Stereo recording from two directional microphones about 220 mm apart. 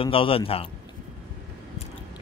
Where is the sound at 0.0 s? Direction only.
25° left (ahead or behind).